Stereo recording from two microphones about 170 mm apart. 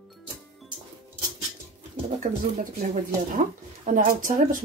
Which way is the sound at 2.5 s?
45° right (ahead or behind).